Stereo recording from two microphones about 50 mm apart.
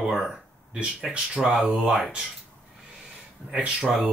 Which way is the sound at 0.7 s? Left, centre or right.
Right.